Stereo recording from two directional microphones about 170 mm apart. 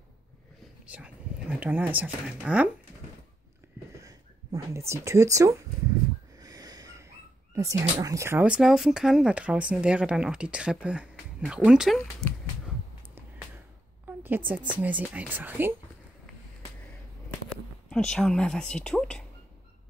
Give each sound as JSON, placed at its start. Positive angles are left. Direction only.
{"t": 0.8, "sound": "speech", "side_deg": -5}
{"t": 4.6, "sound": "a woman's voice", "side_deg": -15}
{"t": 6.3, "sound": "a sound", "side_deg": -20}
{"t": 7.5, "sound": "speech", "side_deg": -20}
{"t": 14.0, "sound": "a sound", "side_deg": -10}
{"t": 14.5, "sound": "a woman's voice", "side_deg": -10}
{"t": 17.8, "sound": "speech", "side_deg": 5}